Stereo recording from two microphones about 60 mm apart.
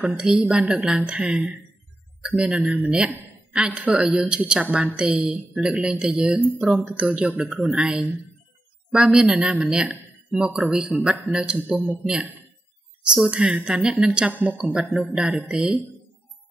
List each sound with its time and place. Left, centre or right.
0.0 s a man's voice: centre
13.1 s speech: centre
14.3 s a man's voice: right
14.6 s speech: centre